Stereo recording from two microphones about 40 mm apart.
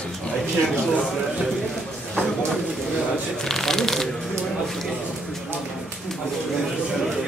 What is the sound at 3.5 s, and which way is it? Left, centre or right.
Speech, centre.